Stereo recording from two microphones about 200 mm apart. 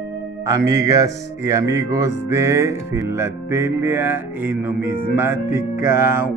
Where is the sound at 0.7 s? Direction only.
20° right (ahead or behind).